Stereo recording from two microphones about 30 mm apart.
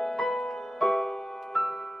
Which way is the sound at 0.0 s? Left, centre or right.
Centre.